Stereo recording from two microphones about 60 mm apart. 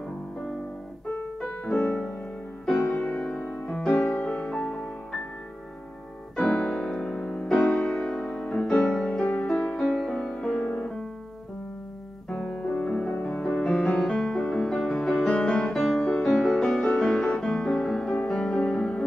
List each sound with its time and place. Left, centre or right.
1.1 s music: centre
4.2 s music: centre
6.3 s piano: centre
7.7 s music: centre
12.3 s music: centre